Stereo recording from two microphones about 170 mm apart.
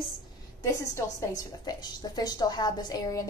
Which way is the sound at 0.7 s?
20° left (ahead or behind).